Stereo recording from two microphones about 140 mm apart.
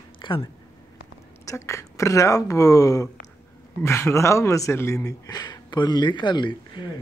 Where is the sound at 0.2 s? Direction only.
30° left (ahead or behind).